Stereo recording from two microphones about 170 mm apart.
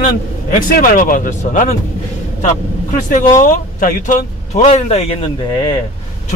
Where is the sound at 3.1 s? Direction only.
50° left (ahead or behind).